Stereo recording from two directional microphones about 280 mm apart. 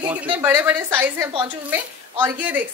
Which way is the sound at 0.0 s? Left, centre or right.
Centre.